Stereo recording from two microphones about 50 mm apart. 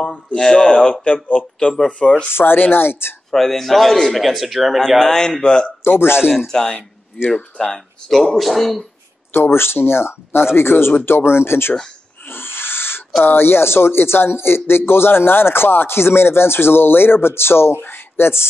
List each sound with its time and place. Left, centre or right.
0.0 s speech: centre
1.0 s speech: left
2.3 s speech: left
3.3 s speech: centre
4.7 s speech: centre
5.9 s speech: left
6.3 s speech: centre
8.1 s speech: centre
9.3 s speech: left
12.3 s owl: left
13.2 s speech: left